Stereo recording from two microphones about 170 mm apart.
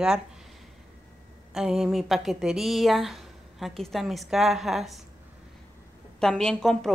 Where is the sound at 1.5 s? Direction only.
Centre (ahead or behind).